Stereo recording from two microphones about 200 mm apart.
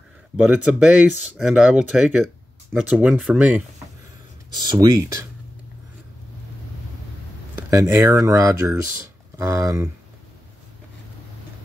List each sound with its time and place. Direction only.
0.4 s speech: 5° right (ahead or behind)
4.6 s speech: 20° right (ahead or behind)
7.7 s speech: 15° right (ahead or behind)